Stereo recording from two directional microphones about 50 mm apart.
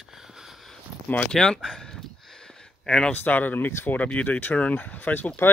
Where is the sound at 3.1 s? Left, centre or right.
Left.